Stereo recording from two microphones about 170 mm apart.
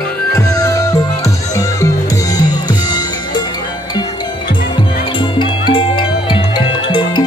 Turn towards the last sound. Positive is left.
turn(degrees=30)  # may be behind; listen again after turning